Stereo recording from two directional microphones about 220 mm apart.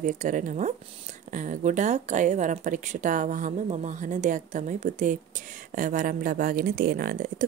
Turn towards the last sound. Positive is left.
turn(degrees=-40)  # may be behind; listen again after turning